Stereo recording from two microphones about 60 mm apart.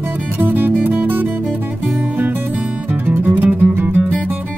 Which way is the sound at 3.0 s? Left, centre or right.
Right.